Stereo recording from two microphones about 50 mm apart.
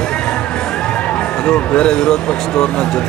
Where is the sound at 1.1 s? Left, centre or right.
Left.